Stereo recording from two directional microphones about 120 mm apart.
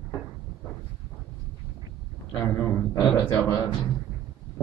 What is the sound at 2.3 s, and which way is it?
Speech, 10° left (ahead or behind).